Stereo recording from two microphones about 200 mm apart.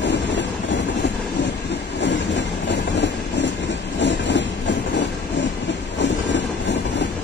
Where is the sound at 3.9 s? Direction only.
60° left (ahead or behind).